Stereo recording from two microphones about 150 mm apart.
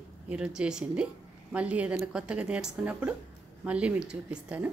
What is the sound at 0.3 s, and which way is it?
A woman's voice, 5° right (ahead or behind).